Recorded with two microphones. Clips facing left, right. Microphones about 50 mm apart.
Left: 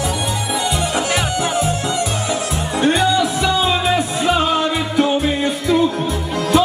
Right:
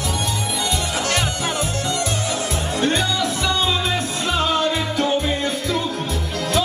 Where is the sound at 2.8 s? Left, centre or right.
Centre.